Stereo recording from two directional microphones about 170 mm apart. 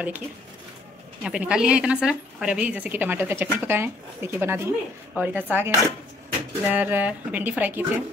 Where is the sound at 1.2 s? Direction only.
5° right (ahead or behind).